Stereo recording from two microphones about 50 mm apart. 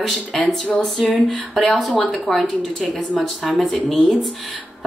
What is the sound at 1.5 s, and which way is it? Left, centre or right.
Speech, centre.